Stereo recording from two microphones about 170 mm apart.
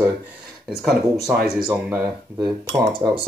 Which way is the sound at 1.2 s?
5° right (ahead or behind).